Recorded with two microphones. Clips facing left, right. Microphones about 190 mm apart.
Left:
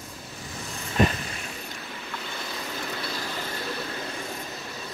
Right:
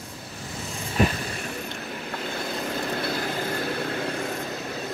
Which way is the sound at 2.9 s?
50° right (ahead or behind).